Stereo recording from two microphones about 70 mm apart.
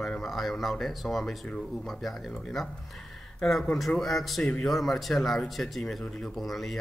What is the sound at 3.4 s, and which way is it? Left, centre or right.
Speech, centre.